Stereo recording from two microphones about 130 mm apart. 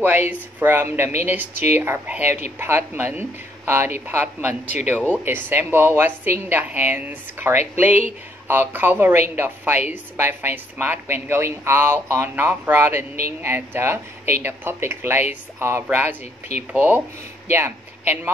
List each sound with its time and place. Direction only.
0.0 s a woman's voice: 15° right (ahead or behind)
4.6 s speech: 60° left (ahead or behind)
5.1 s a woman's voice: 15° right (ahead or behind)